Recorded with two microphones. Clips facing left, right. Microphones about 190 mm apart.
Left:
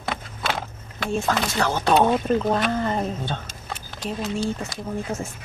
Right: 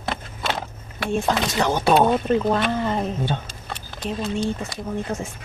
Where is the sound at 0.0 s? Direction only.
Centre (ahead or behind).